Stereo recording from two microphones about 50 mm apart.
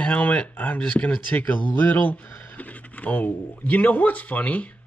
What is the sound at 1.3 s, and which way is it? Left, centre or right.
Speech, left.